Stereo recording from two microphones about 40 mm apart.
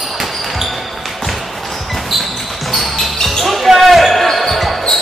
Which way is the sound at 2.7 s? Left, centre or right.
Centre.